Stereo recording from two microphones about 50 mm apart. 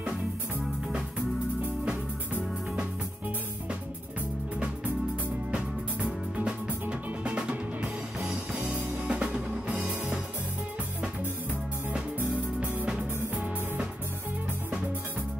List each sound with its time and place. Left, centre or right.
5.5 s music: centre
9.8 s music: right
12.8 s music: centre